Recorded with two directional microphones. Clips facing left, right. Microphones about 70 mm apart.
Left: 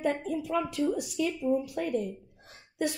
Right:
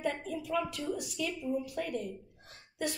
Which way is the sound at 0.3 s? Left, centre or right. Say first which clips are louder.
Left 4 dB; left.